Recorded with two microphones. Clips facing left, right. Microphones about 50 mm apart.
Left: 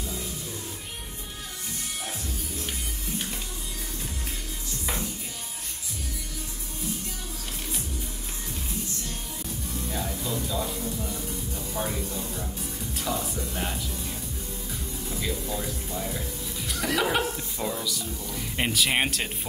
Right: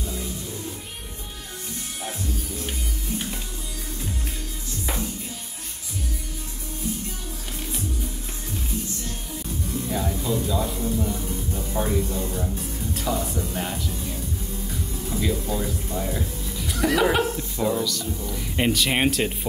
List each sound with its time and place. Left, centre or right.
9.8 s music: centre
12.1 s music: right
12.9 s music: centre
15.1 s speech: centre
16.0 s music: centre
17.4 s speech: centre